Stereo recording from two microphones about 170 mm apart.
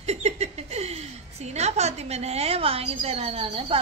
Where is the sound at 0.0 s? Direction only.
40° right (ahead or behind).